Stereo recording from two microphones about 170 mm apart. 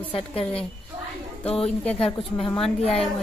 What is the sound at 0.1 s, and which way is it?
Speech, 35° left (ahead or behind).